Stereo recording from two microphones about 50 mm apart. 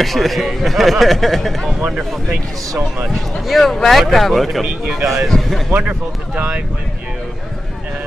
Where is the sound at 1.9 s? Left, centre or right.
Centre.